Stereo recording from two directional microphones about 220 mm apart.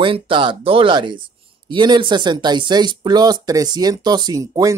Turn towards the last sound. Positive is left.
turn(degrees=-15)  # may be behind; listen again after turning